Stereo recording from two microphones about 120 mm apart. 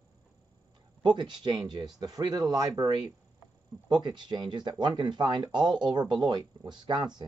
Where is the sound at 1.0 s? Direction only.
40° right (ahead or behind).